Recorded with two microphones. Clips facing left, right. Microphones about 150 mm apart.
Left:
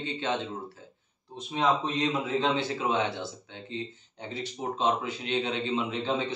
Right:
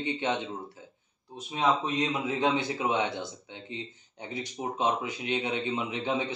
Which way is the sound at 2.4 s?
15° right (ahead or behind).